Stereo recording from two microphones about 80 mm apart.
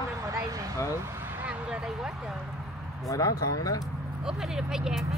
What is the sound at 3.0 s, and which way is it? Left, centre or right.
Speech, left.